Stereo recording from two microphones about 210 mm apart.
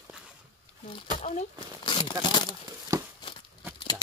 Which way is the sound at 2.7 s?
15° right (ahead or behind).